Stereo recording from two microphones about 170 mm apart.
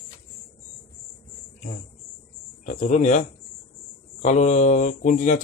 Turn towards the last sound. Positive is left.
turn(degrees=45)  # may be behind; listen again after turning